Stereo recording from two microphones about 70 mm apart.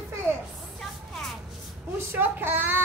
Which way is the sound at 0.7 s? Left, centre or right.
Centre.